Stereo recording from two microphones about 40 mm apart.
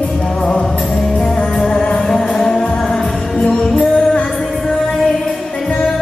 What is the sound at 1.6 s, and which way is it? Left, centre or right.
Music, centre.